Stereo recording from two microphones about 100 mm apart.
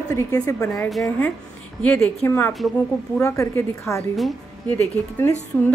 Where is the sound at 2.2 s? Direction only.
20° left (ahead or behind).